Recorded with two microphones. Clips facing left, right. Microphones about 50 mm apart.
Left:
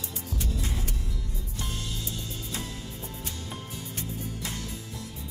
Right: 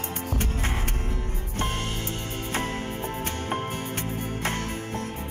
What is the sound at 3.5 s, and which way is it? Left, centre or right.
Music, right.